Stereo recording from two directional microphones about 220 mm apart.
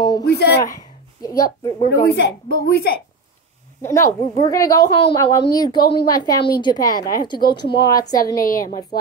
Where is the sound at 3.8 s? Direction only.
15° left (ahead or behind).